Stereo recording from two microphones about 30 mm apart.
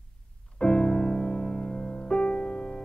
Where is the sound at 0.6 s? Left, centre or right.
Left.